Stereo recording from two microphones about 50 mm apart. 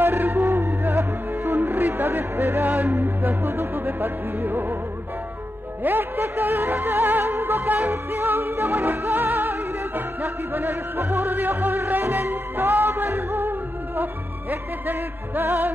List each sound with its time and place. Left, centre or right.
0.0 s music: right
2.6 s music: right
5.8 s music: right
7.9 s music: right
9.1 s music: right
11.3 s music: right